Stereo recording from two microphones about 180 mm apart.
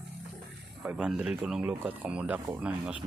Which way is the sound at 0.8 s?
5° right (ahead or behind).